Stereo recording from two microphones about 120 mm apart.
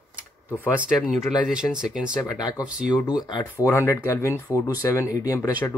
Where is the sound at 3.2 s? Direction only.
30° left (ahead or behind).